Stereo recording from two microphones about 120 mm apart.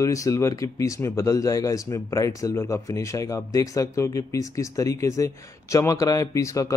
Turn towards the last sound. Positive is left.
turn(degrees=25)  # may be behind; listen again after turning